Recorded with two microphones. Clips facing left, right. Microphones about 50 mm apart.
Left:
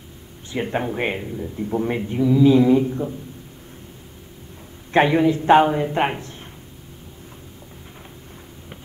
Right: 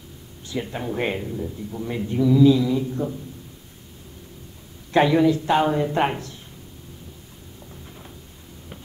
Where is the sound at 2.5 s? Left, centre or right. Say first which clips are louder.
Left 7 dB; left.